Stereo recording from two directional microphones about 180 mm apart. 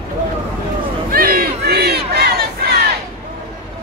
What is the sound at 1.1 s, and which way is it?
Battle cry, 55° right (ahead or behind).